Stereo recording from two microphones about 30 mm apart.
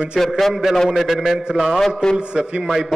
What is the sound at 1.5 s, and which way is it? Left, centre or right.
Speech, centre.